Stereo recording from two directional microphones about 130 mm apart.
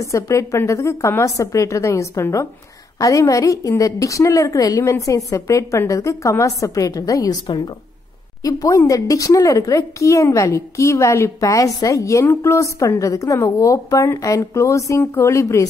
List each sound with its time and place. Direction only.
0.0 s a woman's voice: 25° left (ahead or behind)
8.4 s a woman's voice: 25° left (ahead or behind)